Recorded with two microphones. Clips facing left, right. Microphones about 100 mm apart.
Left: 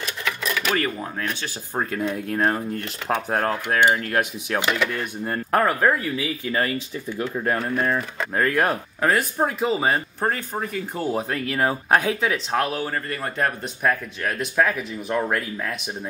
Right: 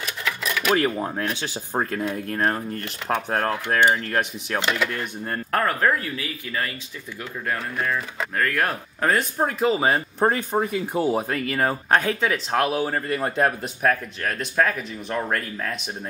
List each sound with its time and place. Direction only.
0.0 s cash register: centre (ahead or behind)
0.7 s speech: 25° right (ahead or behind)
1.7 s speech: centre (ahead or behind)
5.5 s speech: 15° left (ahead or behind)
6.1 s speech: 30° left (ahead or behind)
9.0 s speech: centre (ahead or behind)
10.2 s speech: 20° right (ahead or behind)
11.1 s speech: centre (ahead or behind)
12.7 s speech: 15° right (ahead or behind)
13.8 s speech: 5° left (ahead or behind)